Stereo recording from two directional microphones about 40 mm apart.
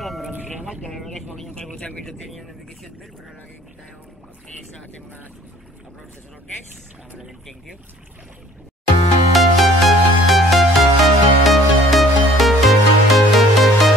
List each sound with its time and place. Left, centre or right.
0.0 s music: centre
0.9 s speech: centre
1.5 s speech: left
2.0 s speech: centre
9.3 s music: centre